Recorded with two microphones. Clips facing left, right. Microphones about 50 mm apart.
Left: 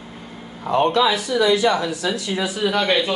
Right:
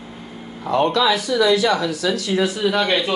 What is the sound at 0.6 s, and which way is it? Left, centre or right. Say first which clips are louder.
Speech: even; left.